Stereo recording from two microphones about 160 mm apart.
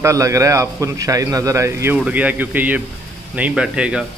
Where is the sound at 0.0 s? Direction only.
20° right (ahead or behind).